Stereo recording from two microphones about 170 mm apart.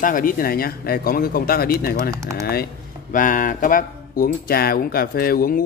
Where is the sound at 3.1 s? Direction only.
50° left (ahead or behind).